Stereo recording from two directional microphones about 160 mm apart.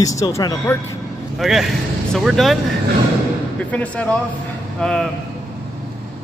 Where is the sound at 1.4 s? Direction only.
Centre (ahead or behind).